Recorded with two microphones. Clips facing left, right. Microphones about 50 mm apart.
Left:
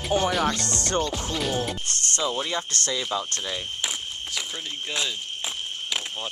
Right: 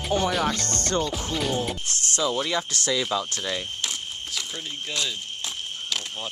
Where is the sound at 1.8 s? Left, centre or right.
Left.